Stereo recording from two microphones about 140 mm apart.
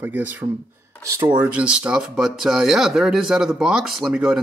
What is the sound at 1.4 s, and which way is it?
Speech, 10° right (ahead or behind).